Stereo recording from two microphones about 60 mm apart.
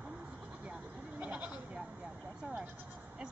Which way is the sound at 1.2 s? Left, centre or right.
Right.